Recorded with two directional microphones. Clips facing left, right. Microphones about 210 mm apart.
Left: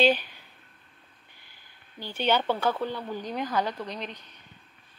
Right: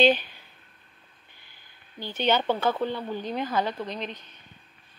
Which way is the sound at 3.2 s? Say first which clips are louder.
Right 2 dB; 25° right (ahead or behind).